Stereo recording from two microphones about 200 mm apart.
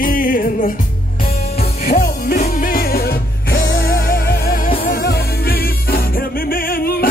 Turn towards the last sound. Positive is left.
turn(degrees=45)  # may be behind; listen again after turning